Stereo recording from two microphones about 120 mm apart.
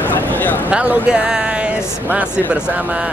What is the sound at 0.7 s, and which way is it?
Speech, 10° right (ahead or behind).